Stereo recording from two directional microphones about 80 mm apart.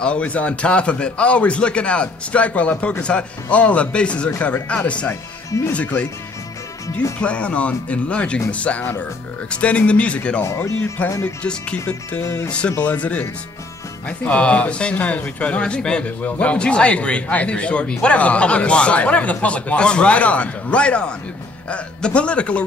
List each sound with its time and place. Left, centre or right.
0.0 s speech: centre
7.2 s speech: centre
10.4 s speech: left
11.0 s speech: centre
12.2 s speech: left
12.4 s speech: centre